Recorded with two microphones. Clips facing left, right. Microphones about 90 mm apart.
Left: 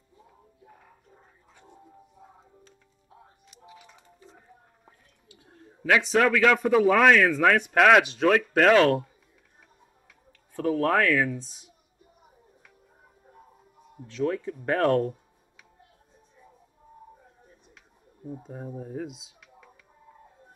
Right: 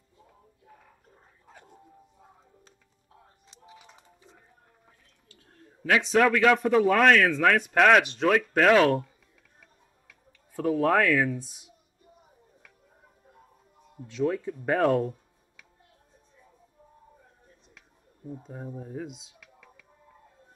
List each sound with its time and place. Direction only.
3.4 s music: 25° right (ahead or behind)
5.3 s a man's voice: 15° left (ahead or behind)
10.7 s speech: 5° right (ahead or behind)
14.1 s speech: 10° right (ahead or behind)
18.2 s speech: 5° left (ahead or behind)